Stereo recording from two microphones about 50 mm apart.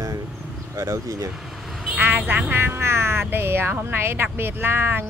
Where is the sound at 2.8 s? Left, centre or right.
Right.